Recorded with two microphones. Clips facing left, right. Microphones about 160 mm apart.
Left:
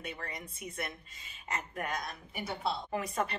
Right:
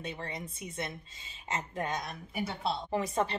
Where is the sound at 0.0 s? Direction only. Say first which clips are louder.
Right 3 dB; 25° right (ahead or behind).